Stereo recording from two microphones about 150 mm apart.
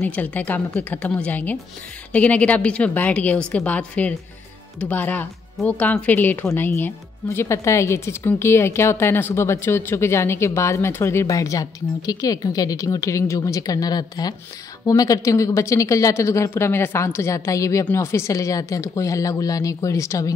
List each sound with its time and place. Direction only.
0.0 s speech: 10° left (ahead or behind)